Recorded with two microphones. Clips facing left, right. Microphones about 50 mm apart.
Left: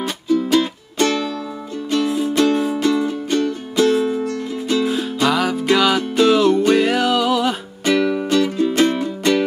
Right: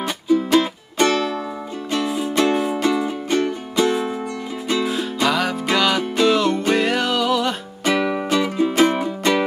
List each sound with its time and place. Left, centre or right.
0.0 s music: centre
1.0 s music: right
4.8 s music: centre
7.9 s music: centre